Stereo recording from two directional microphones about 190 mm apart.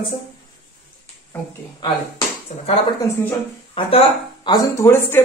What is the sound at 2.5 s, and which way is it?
Speech, 40° left (ahead or behind).